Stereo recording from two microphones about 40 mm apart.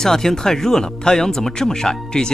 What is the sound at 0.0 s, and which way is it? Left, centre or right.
Speech, centre.